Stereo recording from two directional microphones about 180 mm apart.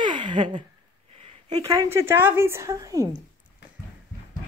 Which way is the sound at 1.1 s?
35° right (ahead or behind).